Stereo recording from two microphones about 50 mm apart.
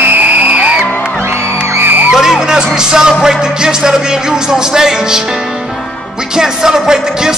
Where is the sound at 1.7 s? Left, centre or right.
Right.